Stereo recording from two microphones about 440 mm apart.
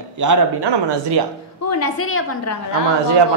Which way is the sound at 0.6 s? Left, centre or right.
Right.